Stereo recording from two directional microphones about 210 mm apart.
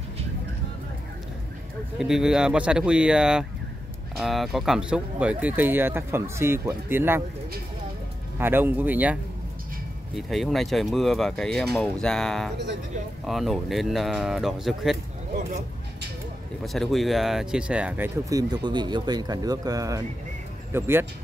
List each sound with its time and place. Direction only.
2.0 s speech: centre (ahead or behind)
8.4 s speech: 10° right (ahead or behind)
16.6 s speech: centre (ahead or behind)